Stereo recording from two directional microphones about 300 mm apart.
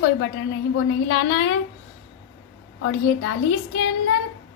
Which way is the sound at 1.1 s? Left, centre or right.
Left.